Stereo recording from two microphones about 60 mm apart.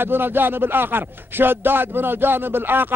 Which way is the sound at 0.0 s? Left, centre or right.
Right.